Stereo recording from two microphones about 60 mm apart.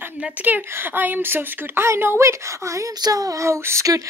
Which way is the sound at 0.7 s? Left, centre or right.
Right.